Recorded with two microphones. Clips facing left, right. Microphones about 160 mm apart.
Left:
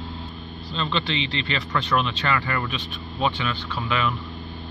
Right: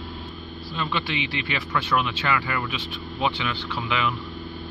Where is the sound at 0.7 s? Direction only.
10° right (ahead or behind).